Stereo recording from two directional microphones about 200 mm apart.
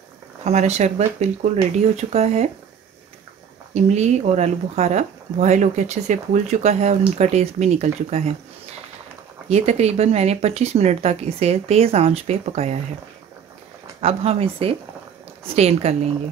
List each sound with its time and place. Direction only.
0.4 s speech: 35° right (ahead or behind)
3.7 s speech: 35° right (ahead or behind)
9.5 s speech: 35° right (ahead or behind)
14.0 s speech: 30° right (ahead or behind)